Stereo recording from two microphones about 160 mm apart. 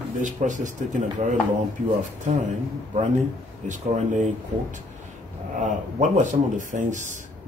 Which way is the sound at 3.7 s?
50° right (ahead or behind).